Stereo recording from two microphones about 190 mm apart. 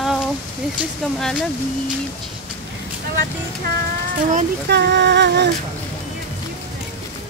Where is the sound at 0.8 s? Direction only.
Centre (ahead or behind).